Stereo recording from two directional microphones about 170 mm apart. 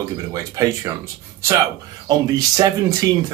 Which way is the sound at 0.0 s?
20° right (ahead or behind).